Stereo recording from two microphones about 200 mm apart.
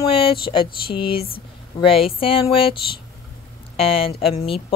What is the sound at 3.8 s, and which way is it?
Speech, 30° left (ahead or behind).